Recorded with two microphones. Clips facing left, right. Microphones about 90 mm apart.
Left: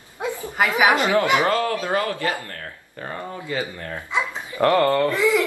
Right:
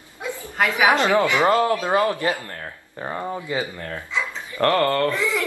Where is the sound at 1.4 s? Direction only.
20° right (ahead or behind).